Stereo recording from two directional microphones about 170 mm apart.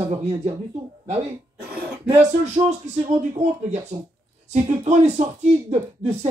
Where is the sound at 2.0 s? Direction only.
40° right (ahead or behind).